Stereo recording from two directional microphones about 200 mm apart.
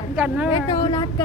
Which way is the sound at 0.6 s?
25° left (ahead or behind).